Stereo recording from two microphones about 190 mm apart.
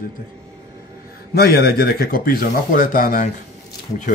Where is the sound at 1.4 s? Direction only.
55° left (ahead or behind).